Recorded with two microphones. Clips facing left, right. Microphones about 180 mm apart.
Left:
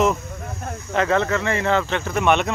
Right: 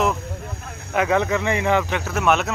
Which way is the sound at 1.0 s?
10° right (ahead or behind).